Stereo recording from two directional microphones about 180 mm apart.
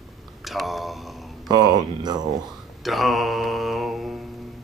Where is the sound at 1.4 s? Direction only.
25° right (ahead or behind).